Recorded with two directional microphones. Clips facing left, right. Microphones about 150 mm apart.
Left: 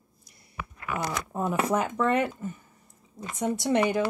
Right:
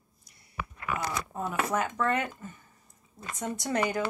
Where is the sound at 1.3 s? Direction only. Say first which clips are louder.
Left 6 dB; 20° left (ahead or behind).